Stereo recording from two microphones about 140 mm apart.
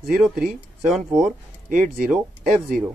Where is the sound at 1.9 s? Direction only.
5° right (ahead or behind).